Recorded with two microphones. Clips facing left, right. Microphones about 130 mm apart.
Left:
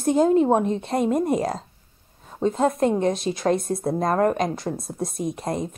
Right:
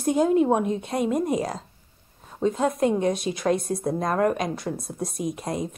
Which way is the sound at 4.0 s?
35° left (ahead or behind).